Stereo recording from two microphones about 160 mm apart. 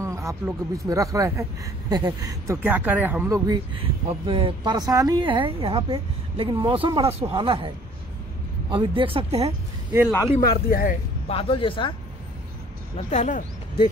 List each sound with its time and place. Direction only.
0.0 s a sound: 20° right (ahead or behind)
0.8 s speech: 20° right (ahead or behind)
3.4 s speech: 30° right (ahead or behind)
10.4 s speech: 65° left (ahead or behind)
11.2 s speech: 35° left (ahead or behind)
12.9 s speech: 45° left (ahead or behind)